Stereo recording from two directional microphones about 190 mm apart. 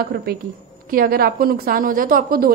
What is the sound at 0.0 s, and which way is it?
A woman's voice, 55° right (ahead or behind).